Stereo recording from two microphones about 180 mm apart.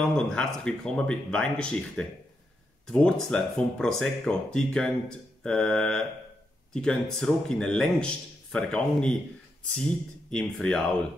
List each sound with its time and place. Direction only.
0.0 s speech: 5° left (ahead or behind)
10.3 s speech: 5° left (ahead or behind)